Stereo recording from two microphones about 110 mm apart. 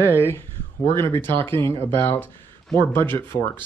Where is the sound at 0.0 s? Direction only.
15° right (ahead or behind).